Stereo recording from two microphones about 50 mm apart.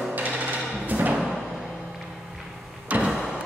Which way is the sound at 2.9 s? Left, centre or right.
Right.